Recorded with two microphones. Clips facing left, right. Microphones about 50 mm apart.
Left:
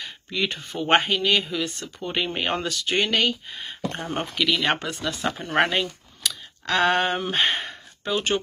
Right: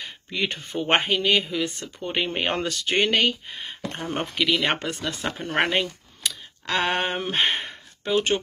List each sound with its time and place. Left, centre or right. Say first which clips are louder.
0.0 s a sound: left 1 dB; right
0.7 s speech: left 1 dB; right
2.6 s speech: right 1 dB; right
4.0 s speech: right 2 dB; centre
4.4 s speech: even; right